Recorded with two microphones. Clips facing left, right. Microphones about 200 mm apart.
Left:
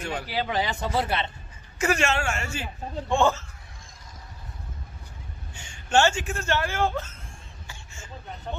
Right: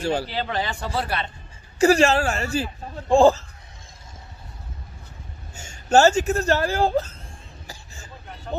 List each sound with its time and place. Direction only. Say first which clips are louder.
0.0 s speech: right 8 dB; 30° right (ahead or behind)
0.3 s a man's voice: even; 10° left (ahead or behind)
1.8 s speech: right 8 dB; 35° right (ahead or behind)
5.5 s speech: right 6 dB; 40° right (ahead or behind)
7.6 s a sound: right 2 dB; 35° right (ahead or behind)